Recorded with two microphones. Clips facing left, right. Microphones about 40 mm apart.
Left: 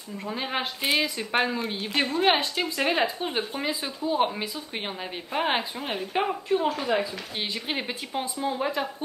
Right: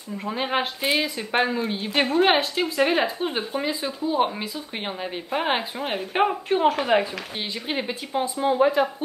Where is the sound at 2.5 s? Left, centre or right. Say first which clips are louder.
Right 4 dB; centre.